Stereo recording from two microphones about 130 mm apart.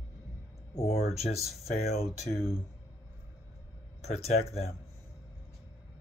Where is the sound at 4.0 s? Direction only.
55° left (ahead or behind).